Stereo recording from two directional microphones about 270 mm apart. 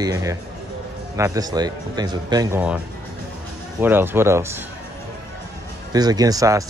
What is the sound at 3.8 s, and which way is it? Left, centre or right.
Speech, centre.